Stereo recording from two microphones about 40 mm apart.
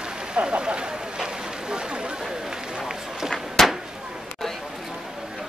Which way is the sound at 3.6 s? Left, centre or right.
Centre.